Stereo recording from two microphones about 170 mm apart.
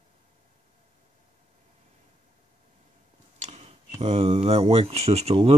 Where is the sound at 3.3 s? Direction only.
35° right (ahead or behind).